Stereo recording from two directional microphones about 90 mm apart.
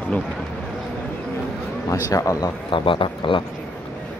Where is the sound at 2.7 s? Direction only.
70° left (ahead or behind).